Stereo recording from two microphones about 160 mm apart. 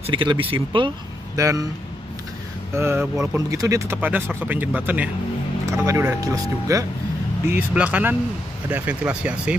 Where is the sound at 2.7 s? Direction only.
15° right (ahead or behind).